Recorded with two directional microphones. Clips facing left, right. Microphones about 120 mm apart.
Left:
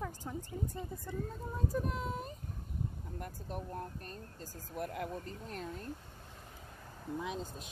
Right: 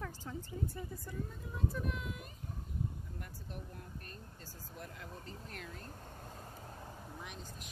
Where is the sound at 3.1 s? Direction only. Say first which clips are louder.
Left 6 dB; 45° left (ahead or behind).